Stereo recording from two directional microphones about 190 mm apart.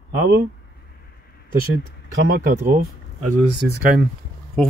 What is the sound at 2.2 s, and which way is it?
Speech, 50° right (ahead or behind).